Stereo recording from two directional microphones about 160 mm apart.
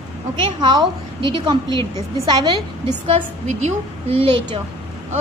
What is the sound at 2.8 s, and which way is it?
Speech, 45° right (ahead or behind).